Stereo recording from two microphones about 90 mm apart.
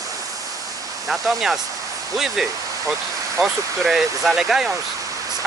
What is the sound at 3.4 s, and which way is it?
Speech, 5° right (ahead or behind).